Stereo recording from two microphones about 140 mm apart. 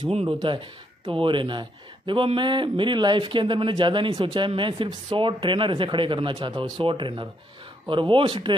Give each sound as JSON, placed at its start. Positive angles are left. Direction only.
{"t": 0.1, "sound": "speech", "side_deg": -40}